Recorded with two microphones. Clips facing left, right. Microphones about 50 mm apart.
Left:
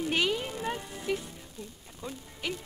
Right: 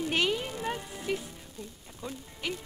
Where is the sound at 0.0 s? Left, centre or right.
Centre.